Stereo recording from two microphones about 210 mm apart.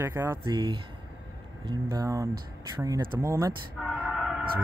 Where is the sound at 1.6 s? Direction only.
20° right (ahead or behind).